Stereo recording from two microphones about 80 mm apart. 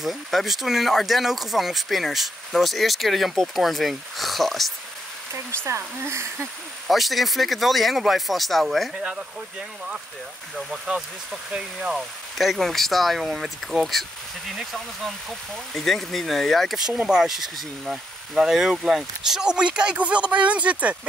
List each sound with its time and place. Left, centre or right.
0.0 s speech: centre
5.7 s speech: right
6.9 s speech: centre
11.9 s speech: centre